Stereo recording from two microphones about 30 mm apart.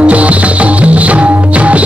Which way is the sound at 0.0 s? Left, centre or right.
Right.